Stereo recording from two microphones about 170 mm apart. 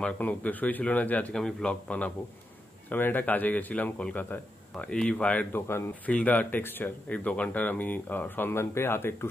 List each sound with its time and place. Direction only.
0.0 s a man's voice: 10° left (ahead or behind)